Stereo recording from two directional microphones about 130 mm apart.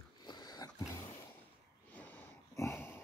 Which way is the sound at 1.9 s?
15° left (ahead or behind).